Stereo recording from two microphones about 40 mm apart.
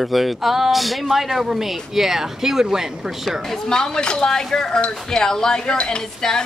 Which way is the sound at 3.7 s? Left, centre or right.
Centre.